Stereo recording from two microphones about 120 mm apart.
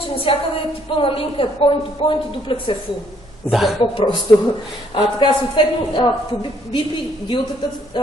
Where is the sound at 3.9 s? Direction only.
40° left (ahead or behind).